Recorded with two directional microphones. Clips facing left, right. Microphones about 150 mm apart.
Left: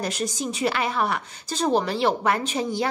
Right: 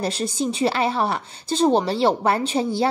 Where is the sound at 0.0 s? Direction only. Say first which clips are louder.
Right 4 dB; 30° right (ahead or behind).